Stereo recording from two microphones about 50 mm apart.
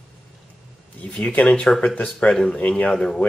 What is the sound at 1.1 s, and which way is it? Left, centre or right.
Speech, left.